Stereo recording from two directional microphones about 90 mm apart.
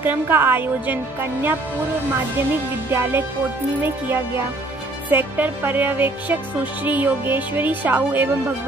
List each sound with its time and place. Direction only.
0.0 s music: 25° right (ahead or behind)
2.9 s music: 25° right (ahead or behind)